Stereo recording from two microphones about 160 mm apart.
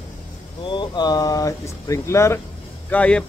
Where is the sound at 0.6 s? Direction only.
30° left (ahead or behind).